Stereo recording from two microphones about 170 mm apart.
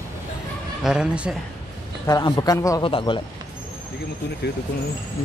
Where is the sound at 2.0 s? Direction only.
20° left (ahead or behind).